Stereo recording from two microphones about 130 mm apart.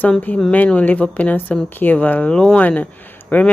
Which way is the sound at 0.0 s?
10° left (ahead or behind).